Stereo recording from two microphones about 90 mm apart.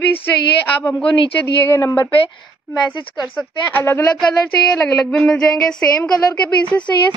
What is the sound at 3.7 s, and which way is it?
Speech, 25° left (ahead or behind).